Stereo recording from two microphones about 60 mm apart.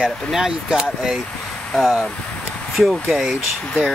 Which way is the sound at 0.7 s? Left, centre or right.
Centre.